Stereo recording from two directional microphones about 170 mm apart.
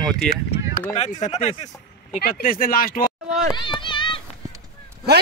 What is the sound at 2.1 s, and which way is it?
Speech, 55° left (ahead or behind).